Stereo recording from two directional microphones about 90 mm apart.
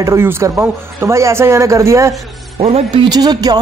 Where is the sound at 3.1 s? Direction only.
50° right (ahead or behind).